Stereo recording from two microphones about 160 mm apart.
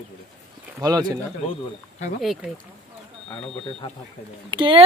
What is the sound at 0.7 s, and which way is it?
Speech, 20° right (ahead or behind).